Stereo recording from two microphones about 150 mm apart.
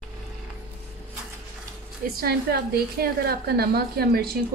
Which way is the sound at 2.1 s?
90° right.